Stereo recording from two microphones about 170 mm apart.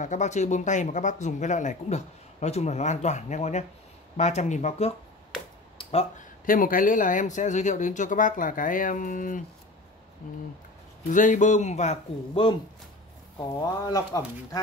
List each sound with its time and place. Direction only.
0.0 s speech: 45° left (ahead or behind)
6.4 s speech: 55° left (ahead or behind)
11.1 s speech: 50° left (ahead or behind)
13.6 s speech: 20° left (ahead or behind)